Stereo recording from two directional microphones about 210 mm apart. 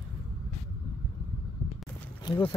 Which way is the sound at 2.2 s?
20° left (ahead or behind).